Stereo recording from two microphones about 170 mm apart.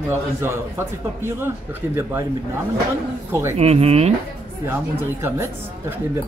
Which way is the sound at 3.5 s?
35° right (ahead or behind).